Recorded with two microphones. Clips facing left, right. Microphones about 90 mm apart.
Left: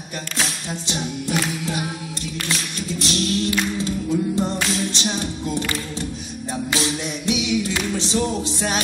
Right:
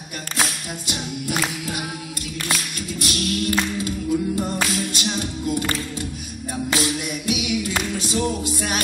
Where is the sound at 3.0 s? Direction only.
30° left (ahead or behind).